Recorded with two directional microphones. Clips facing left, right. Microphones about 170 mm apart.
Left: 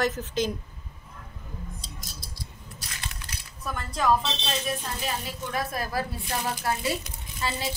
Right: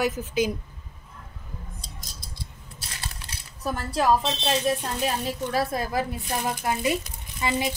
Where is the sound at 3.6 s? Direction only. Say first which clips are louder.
Right 4 dB; 30° right (ahead or behind).